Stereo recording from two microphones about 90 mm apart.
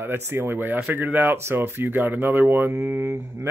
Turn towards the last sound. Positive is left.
turn(degrees=-40)  # may be behind; listen again after turning